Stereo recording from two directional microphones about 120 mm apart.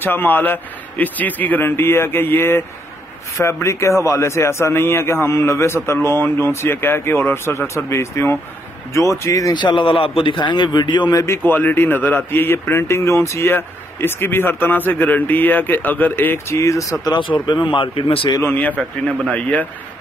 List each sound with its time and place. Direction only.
0.0 s a man's voice: 15° left (ahead or behind)
9.5 s a man's voice: 40° left (ahead or behind)
11.2 s speech: 20° left (ahead or behind); by 18.3 s 45° left (ahead or behind)
18.4 s a man's voice: 15° left (ahead or behind)